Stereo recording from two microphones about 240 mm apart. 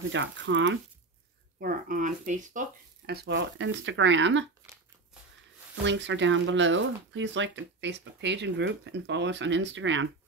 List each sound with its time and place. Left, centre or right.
0.1 s speech: right
1.6 s speech: right
5.9 s speech: right